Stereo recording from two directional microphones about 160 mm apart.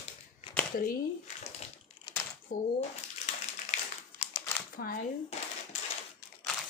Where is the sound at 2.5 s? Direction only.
60° left (ahead or behind).